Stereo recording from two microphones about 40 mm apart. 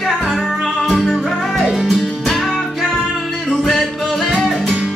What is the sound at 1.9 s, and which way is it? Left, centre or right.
Music, centre.